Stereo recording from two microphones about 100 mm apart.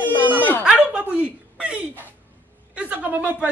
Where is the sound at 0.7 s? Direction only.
10° right (ahead or behind).